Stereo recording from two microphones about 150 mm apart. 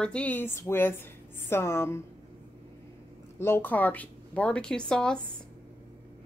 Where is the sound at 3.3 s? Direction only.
15° left (ahead or behind).